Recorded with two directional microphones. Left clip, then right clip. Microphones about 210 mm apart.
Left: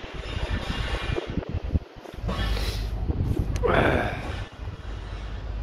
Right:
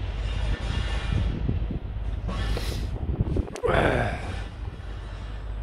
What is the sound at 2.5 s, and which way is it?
Vehicle, 5° right (ahead or behind).